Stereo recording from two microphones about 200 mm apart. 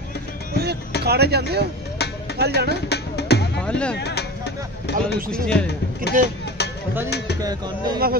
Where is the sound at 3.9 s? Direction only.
55° left (ahead or behind).